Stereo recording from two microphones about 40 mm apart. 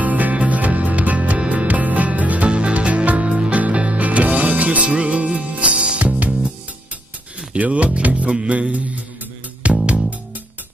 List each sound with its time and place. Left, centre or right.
0.0 s music: right
7.5 s speech: right
9.6 s music: right